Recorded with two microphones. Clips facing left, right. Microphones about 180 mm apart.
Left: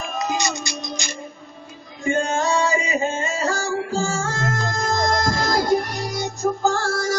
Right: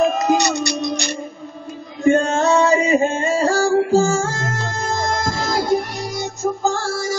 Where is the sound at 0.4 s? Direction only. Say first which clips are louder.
Right 7 dB; 65° right (ahead or behind).